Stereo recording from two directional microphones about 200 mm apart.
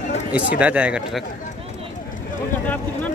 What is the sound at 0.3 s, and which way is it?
Speech, 5° right (ahead or behind).